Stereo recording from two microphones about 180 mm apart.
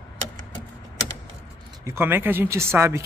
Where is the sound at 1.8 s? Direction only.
10° right (ahead or behind).